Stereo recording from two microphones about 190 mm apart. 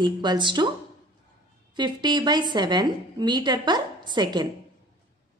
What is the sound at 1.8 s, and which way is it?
A woman's voice, 25° right (ahead or behind).